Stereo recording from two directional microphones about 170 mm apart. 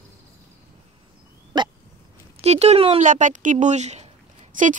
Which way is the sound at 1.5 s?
25° right (ahead or behind).